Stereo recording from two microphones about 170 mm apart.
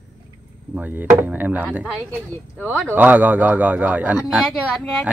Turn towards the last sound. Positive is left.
turn(degrees=0)  # may be behind; listen again after turning